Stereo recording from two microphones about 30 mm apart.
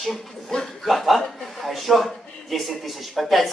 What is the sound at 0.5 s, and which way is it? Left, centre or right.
Speech, left.